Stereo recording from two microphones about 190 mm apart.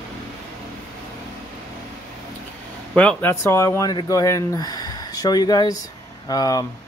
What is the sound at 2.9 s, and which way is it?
Speech, 10° left (ahead or behind).